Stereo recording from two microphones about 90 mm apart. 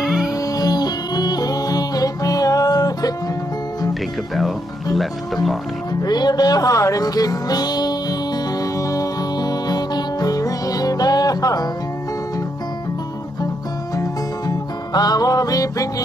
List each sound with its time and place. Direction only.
0.0 s music: centre (ahead or behind)
0.5 s music: 45° left (ahead or behind)
4.9 s speech: centre (ahead or behind)
6.0 s music: 50° left (ahead or behind)
14.5 s music: 50° left (ahead or behind)